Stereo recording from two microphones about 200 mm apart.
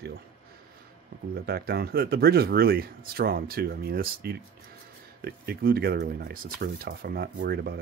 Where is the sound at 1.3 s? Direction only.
50° right (ahead or behind).